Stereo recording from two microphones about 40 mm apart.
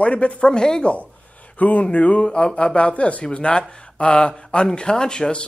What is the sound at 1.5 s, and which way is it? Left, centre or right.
Speech, left.